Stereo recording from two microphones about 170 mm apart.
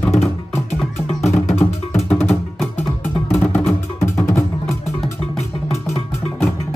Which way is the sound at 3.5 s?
10° left (ahead or behind).